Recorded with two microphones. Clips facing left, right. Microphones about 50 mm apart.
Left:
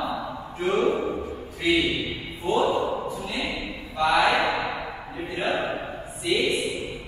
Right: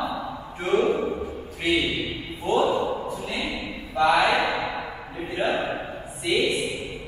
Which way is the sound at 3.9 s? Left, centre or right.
Right.